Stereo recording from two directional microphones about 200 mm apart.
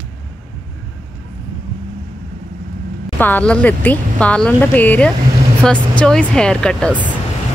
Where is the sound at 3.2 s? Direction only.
10° left (ahead or behind).